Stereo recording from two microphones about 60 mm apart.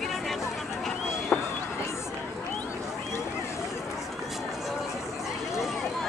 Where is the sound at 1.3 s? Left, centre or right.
Centre.